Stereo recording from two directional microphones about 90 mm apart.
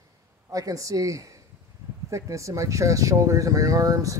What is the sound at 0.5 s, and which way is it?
Speech, 40° right (ahead or behind).